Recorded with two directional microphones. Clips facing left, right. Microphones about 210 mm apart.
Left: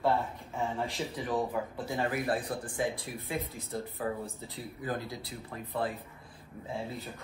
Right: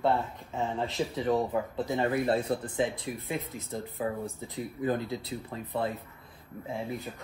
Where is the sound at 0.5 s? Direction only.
20° right (ahead or behind).